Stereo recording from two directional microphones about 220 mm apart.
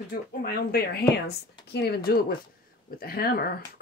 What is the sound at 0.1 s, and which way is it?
A woman's voice, 40° left (ahead or behind).